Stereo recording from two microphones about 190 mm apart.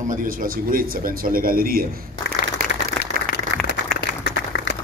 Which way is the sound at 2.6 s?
50° right (ahead or behind).